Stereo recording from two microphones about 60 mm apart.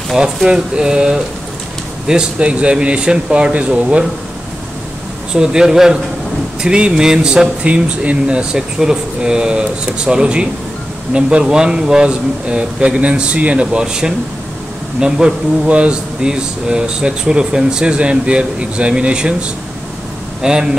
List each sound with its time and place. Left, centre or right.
0.2 s speech: centre
5.3 s speech: centre
20.4 s speech: centre